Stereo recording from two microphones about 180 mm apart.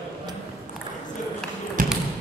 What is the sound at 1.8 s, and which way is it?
Basketball bounce, 50° right (ahead or behind).